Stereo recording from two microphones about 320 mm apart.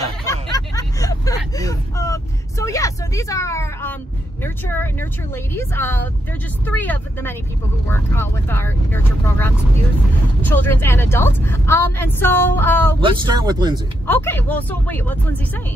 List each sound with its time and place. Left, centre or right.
0.3 s vehicle: centre
4.4 s speech: centre
13.0 s speech: centre
14.0 s speech: centre